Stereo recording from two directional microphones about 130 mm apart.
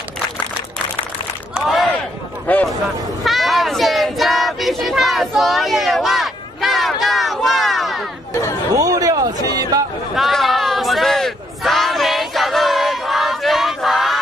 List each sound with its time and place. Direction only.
1.5 s battle cry: centre (ahead or behind)
2.5 s a sound: 10° left (ahead or behind)
3.3 s child singing: centre (ahead or behind)
8.3 s chatter: 20° left (ahead or behind)
8.7 s a sound: 25° right (ahead or behind)
10.1 s crowd: centre (ahead or behind)